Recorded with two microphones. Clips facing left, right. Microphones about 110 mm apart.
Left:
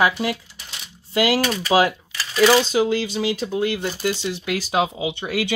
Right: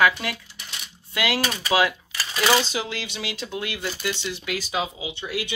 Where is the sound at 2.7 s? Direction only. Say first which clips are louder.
Left 10 dB; 40° left (ahead or behind).